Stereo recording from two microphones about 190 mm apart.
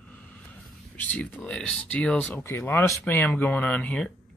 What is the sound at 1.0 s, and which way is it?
Speech, 5° left (ahead or behind).